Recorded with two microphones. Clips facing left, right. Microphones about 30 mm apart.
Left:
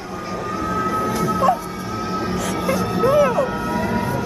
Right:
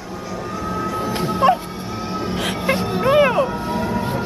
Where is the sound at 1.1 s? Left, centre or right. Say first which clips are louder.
Right 3 dB; right.